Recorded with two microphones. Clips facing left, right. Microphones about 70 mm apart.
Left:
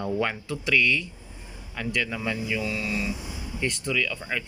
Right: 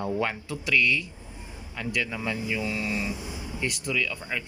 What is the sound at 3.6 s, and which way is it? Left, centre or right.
Speech, centre.